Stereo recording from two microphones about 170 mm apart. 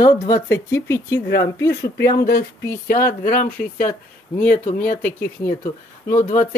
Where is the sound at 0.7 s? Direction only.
15° left (ahead or behind).